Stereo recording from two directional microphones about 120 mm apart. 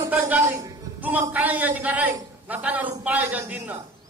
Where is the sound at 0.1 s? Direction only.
15° right (ahead or behind).